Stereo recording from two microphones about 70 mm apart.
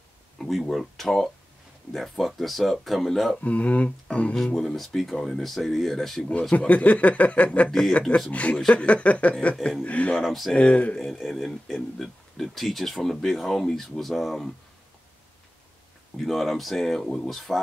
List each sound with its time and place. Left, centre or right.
0.4 s speech: centre
3.3 s speech: centre
4.6 s speech: centre
6.5 s speech: centre
10.2 s speech: centre
10.5 s speech: centre
11.0 s speech: centre
16.2 s speech: centre